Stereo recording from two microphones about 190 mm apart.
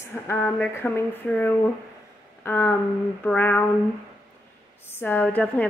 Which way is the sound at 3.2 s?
10° left (ahead or behind).